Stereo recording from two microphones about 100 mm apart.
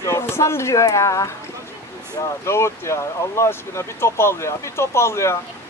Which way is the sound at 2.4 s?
25° left (ahead or behind).